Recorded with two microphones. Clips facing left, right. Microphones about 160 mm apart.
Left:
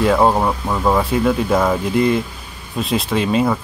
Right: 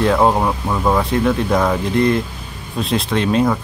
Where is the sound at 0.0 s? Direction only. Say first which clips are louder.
Even; 5° left (ahead or behind).